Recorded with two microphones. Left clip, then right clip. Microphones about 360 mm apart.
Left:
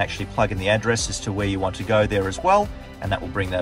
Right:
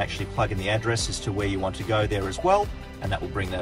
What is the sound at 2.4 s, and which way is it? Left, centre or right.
Speech, left.